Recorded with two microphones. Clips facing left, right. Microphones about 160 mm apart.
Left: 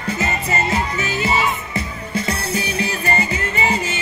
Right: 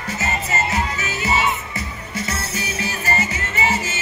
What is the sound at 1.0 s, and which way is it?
Music, 20° right (ahead or behind).